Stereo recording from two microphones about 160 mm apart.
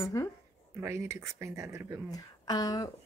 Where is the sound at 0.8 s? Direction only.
15° right (ahead or behind).